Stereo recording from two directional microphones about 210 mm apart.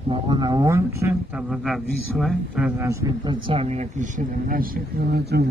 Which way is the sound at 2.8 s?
15° right (ahead or behind).